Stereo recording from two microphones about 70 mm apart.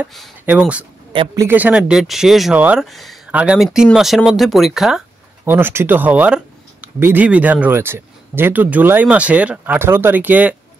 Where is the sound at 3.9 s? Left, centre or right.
Centre.